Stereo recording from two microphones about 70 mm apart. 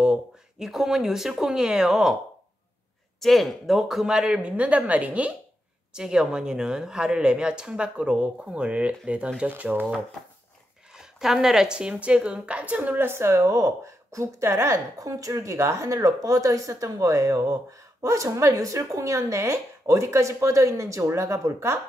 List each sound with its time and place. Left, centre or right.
0.0 s speech: centre
3.2 s a woman's voice: centre; by 9.8 s right
10.9 s a woman's voice: centre
13.0 s speech: right